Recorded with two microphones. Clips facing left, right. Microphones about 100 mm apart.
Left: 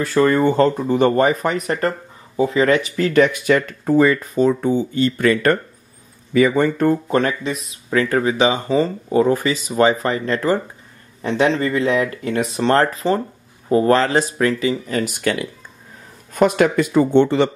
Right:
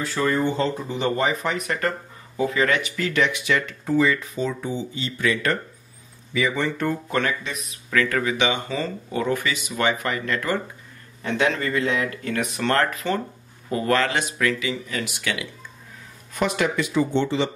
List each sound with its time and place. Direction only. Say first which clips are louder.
0.0 s speech: left 7 dB; 50° left (ahead or behind)
1.7 s speech: left 5 dB; 30° left (ahead or behind); by 17.5 s 55° left (ahead or behind)